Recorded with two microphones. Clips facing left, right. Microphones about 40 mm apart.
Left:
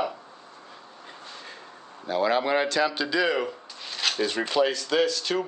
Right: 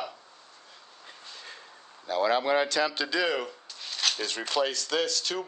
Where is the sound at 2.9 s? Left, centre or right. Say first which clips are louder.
Left 3 dB; centre.